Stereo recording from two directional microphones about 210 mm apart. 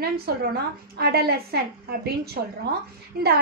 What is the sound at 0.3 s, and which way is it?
A woman's voice, 50° right (ahead or behind).